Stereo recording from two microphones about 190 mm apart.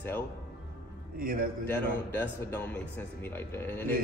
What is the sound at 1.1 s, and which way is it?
Speech, 50° right (ahead or behind).